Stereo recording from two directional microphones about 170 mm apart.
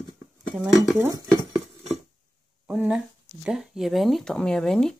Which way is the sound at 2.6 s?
5° right (ahead or behind).